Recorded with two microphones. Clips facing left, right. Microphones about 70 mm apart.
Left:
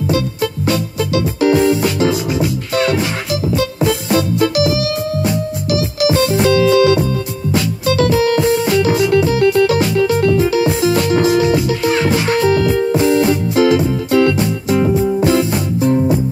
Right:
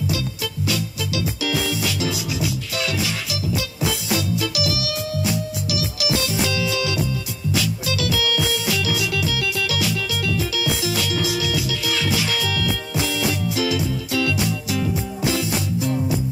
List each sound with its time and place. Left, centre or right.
0.1 s music: left